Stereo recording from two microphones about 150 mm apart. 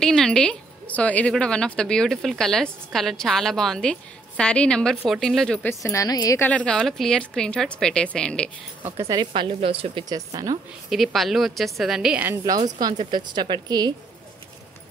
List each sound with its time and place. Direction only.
0.0 s a woman's voice: 5° left (ahead or behind)
5.8 s a woman's voice: 20° left (ahead or behind)
6.4 s a woman's voice: 10° left (ahead or behind)
8.8 s speech: 20° right (ahead or behind); by 10.0 s 40° right (ahead or behind)
10.0 s speech: 25° right (ahead or behind)
11.1 s a woman's voice: centre (ahead or behind)
12.6 s speech: 25° right (ahead or behind)